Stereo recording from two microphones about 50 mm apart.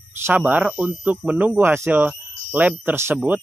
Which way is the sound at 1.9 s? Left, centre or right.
Right.